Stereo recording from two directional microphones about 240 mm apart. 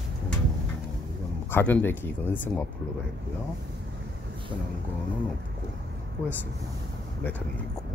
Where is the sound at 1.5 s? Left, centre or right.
Centre.